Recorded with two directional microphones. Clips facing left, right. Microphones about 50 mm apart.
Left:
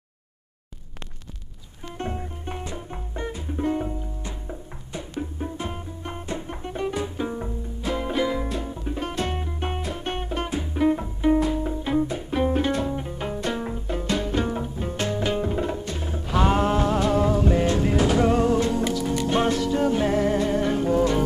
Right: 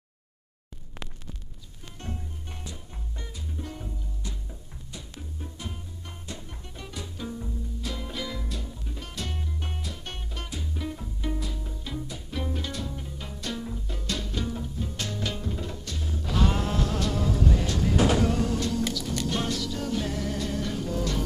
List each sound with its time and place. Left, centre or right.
2.0 s music: left